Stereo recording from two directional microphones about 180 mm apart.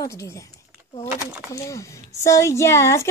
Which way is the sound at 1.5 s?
15° left (ahead or behind).